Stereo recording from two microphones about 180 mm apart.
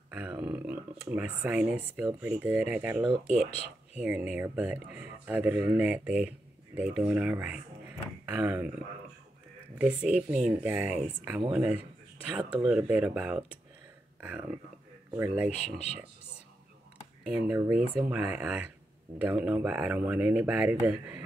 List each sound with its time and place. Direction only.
0.1 s speech: 10° right (ahead or behind)
3.4 s speech: 35° left (ahead or behind)
3.9 s speech: 5° right (ahead or behind)
9.8 s speech: 5° right (ahead or behind)
17.2 s speech: 10° right (ahead or behind)